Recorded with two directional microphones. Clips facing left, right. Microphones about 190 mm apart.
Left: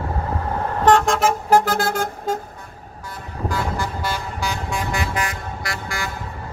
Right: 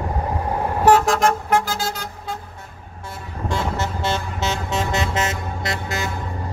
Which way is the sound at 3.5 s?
25° right (ahead or behind).